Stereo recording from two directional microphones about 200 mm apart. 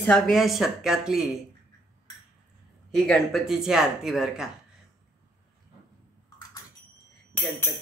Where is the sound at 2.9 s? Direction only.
Centre (ahead or behind).